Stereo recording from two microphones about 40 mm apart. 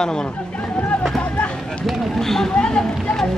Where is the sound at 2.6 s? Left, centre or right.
Left.